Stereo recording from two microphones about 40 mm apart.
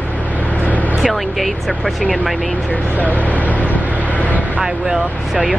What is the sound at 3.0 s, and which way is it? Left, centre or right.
Vehicle, left.